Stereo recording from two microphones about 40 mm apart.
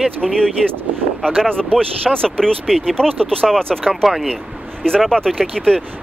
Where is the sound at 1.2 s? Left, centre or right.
Centre.